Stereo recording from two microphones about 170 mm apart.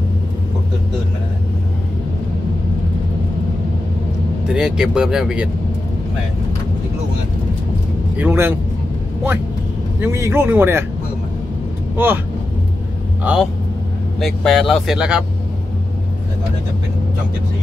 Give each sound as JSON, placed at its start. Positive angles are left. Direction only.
{"t": 4.5, "sound": "speech", "side_deg": -5}
{"t": 8.2, "sound": "speech", "side_deg": -10}
{"t": 9.9, "sound": "speech", "side_deg": -15}
{"t": 12.0, "sound": "speech", "side_deg": -10}
{"t": 13.2, "sound": "speech", "side_deg": -5}